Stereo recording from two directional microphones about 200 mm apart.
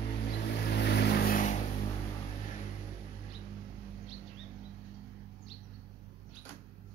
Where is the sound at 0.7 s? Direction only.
55° left (ahead or behind); by 1.6 s 40° left (ahead or behind).